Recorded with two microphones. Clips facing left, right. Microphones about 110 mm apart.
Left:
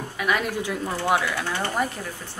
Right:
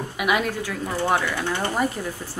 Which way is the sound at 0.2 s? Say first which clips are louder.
Right 2 dB; 15° right (ahead or behind).